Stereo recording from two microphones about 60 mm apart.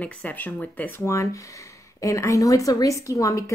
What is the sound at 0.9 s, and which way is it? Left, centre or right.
Speech, left.